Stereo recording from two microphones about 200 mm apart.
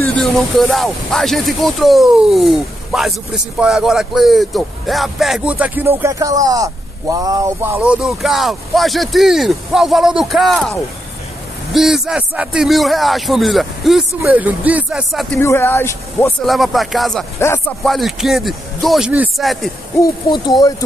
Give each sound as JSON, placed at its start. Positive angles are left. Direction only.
{"t": 0.1, "sound": "speech", "side_deg": 5}
{"t": 15.3, "sound": "speech", "side_deg": 10}
{"t": 16.4, "sound": "speech", "side_deg": 0}
{"t": 17.4, "sound": "speech", "side_deg": 15}
{"t": 17.8, "sound": "speech", "side_deg": 0}
{"t": 20.2, "sound": "speech", "side_deg": 20}